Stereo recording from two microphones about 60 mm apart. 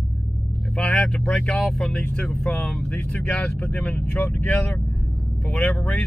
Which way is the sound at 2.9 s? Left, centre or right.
Left.